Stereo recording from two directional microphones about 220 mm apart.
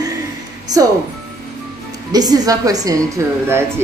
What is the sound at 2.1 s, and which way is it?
A woman's voice, 15° right (ahead or behind).